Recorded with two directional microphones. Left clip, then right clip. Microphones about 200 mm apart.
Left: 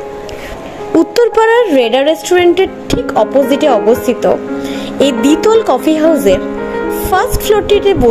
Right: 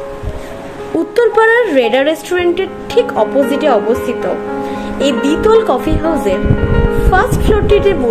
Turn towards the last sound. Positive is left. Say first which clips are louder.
# left 2 dB
turn(degrees=25)  # may be behind; listen again after turning